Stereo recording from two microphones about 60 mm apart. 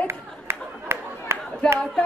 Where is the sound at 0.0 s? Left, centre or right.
Right.